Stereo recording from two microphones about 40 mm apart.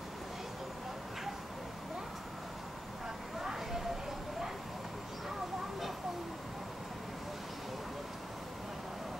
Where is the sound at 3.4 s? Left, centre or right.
Centre.